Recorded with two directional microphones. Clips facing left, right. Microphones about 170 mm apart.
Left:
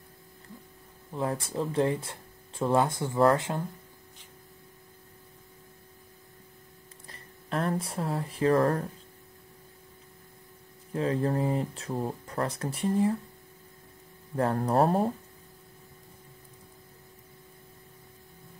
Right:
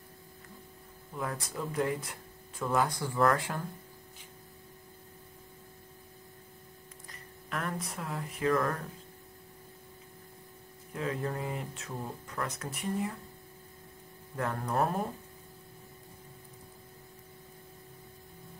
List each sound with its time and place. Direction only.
1.1 s speech: 30° left (ahead or behind)
7.1 s speech: 30° left (ahead or behind)
10.9 s speech: 30° left (ahead or behind)
14.3 s speech: 35° left (ahead or behind)